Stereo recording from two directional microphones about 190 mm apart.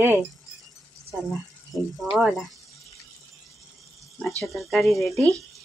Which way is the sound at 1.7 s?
Centre (ahead or behind).